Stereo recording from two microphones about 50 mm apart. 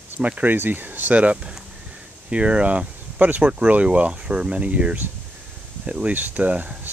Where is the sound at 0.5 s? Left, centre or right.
Right.